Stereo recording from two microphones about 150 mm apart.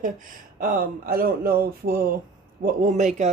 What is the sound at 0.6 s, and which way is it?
A woman's voice, 75° right (ahead or behind).